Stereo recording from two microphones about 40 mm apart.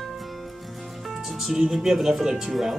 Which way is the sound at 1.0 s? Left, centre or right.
Centre.